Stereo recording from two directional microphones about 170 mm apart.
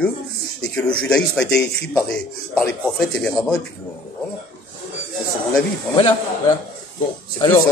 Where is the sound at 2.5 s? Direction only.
5° left (ahead or behind).